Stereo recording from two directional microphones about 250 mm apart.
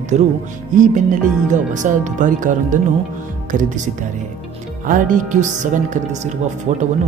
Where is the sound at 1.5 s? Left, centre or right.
Right.